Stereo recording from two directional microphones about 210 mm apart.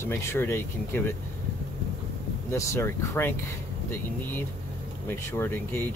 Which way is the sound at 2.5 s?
15° left (ahead or behind).